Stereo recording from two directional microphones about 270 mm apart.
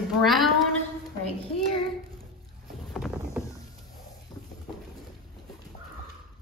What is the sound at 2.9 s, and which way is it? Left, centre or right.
Rowboat, centre.